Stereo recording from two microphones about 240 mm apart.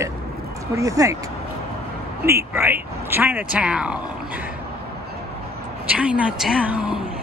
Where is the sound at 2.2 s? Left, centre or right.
Centre.